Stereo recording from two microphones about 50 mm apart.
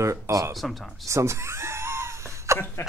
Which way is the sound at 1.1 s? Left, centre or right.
Right.